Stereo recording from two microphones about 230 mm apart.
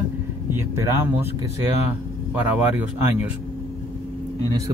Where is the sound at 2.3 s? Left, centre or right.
Centre.